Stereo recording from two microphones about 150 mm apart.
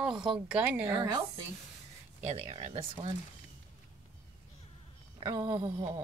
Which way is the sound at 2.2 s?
45° right (ahead or behind).